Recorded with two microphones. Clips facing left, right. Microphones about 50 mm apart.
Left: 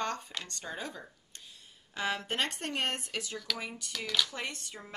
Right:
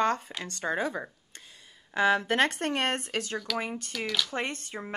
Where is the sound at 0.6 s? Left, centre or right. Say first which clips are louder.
Right 14 dB; right.